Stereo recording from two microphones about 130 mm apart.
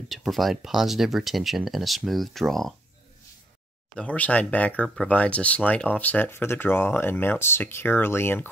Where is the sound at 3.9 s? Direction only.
10° left (ahead or behind).